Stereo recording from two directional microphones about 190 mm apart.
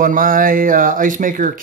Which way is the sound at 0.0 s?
45° right (ahead or behind).